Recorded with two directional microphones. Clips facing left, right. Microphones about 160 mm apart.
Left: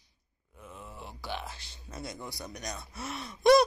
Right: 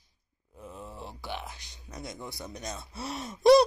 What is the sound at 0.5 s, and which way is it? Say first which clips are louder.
Groan: right 4 dB; 35° right (ahead or behind).